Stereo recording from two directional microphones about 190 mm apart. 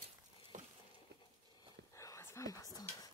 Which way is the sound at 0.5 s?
40° right (ahead or behind).